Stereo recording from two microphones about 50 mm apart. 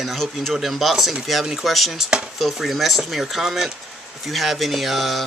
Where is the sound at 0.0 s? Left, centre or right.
Centre.